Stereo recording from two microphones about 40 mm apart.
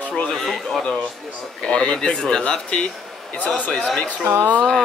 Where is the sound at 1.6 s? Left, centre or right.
Left.